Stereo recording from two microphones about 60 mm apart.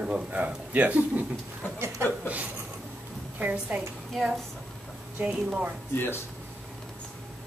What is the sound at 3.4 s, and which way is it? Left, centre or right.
Speech, right.